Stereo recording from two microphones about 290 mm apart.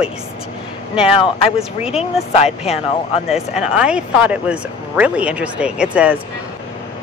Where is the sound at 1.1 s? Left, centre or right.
Centre.